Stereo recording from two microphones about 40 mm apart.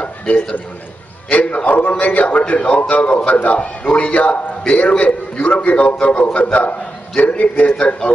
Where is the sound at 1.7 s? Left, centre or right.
Left.